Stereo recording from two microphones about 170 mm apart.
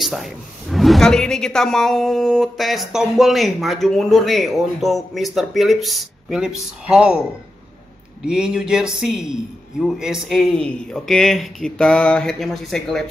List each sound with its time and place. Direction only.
0.0 s speech: centre (ahead or behind)
8.3 s speech: 5° right (ahead or behind)